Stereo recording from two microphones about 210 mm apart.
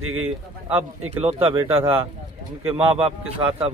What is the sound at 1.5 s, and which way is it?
Speech, 10° right (ahead or behind).